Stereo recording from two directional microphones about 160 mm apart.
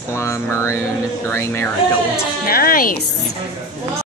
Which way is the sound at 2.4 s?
65° left (ahead or behind).